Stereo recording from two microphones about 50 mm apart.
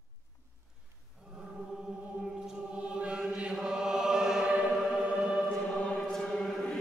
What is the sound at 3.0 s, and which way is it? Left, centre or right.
Chant, right.